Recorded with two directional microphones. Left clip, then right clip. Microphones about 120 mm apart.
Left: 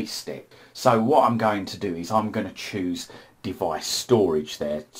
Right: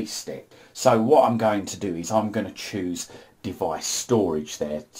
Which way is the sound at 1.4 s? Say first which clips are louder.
Right 1 dB; 25° right (ahead or behind).